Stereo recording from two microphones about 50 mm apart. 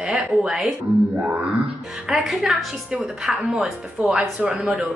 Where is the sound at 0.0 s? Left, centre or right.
Centre.